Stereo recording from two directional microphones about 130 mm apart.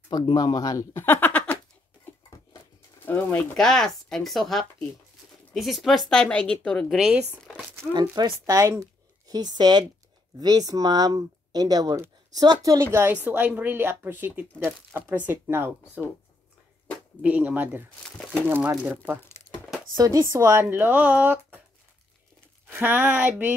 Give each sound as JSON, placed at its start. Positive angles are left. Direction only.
{"t": 0.1, "sound": "speech", "side_deg": 30}
{"t": 3.1, "sound": "speech", "side_deg": 10}
{"t": 7.2, "sound": "crumpling", "side_deg": -15}
{"t": 7.9, "sound": "a woman's voice", "side_deg": -30}
{"t": 17.2, "sound": "a woman's voice", "side_deg": -10}
{"t": 18.0, "sound": "speech", "side_deg": 10}
{"t": 18.5, "sound": "a woman's voice", "side_deg": -15}
{"t": 20.0, "sound": "a woman's voice", "side_deg": -25}
{"t": 22.7, "sound": "a woman's voice", "side_deg": -15}